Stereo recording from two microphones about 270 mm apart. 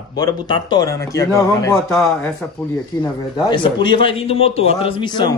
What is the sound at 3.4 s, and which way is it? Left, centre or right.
A man's voice, centre.